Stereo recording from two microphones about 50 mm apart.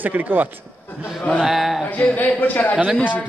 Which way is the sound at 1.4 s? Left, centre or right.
Centre.